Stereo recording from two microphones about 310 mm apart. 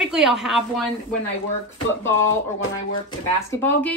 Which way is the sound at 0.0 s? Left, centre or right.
Centre.